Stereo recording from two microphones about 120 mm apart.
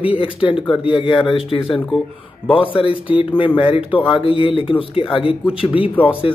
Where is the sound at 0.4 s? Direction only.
45° left (ahead or behind).